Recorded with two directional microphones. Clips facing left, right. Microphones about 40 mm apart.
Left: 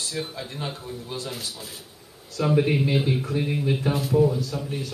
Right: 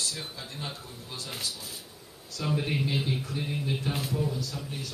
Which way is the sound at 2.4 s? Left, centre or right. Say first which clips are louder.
Left 8 dB; centre.